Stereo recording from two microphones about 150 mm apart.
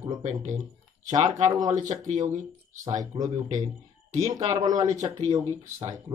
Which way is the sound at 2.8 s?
25° right (ahead or behind).